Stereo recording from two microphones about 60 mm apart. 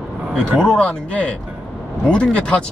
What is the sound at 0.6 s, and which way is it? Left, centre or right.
Speech, centre.